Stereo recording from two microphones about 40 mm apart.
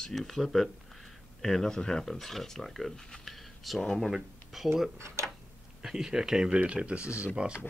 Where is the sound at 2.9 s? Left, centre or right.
Centre.